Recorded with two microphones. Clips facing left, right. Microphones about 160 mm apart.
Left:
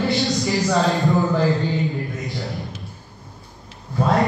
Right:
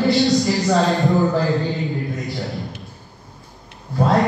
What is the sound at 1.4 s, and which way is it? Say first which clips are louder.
Mantra: even; centre (ahead or behind).